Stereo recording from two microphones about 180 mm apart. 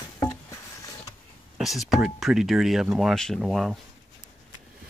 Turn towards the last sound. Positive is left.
turn(degrees=0)  # may be behind; listen again after turning